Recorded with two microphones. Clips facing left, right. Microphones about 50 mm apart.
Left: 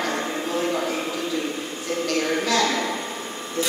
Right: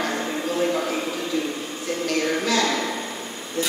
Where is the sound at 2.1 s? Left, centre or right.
Centre.